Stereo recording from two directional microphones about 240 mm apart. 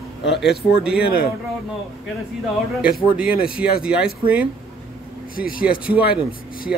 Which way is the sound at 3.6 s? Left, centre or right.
Centre.